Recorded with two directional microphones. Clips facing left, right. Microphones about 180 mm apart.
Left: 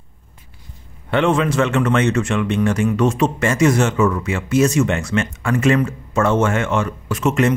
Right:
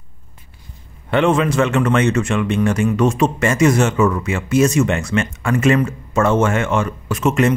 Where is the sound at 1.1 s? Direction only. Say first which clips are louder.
Right 1 dB; 15° right (ahead or behind).